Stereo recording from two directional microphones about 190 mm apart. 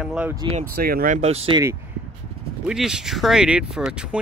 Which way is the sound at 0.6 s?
50° right (ahead or behind).